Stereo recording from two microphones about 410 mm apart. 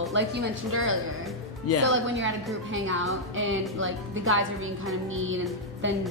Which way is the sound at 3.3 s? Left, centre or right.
Right.